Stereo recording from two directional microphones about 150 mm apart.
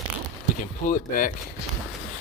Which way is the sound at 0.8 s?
65° left (ahead or behind).